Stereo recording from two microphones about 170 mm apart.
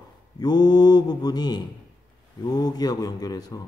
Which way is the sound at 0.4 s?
25° left (ahead or behind).